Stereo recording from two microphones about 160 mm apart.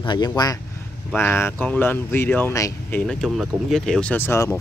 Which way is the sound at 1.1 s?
15° left (ahead or behind).